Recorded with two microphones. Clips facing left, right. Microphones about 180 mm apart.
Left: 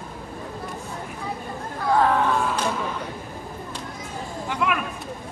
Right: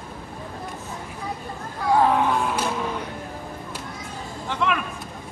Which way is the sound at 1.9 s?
10° right (ahead or behind).